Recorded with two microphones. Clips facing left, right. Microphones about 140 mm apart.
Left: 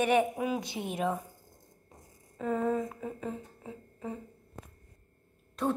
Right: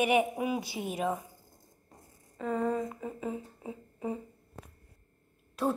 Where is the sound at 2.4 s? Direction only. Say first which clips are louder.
Left 1 dB; centre (ahead or behind).